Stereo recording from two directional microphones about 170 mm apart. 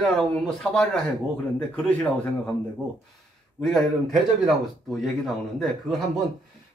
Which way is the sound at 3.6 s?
Centre (ahead or behind).